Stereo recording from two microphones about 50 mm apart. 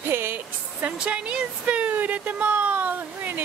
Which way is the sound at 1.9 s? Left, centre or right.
Right.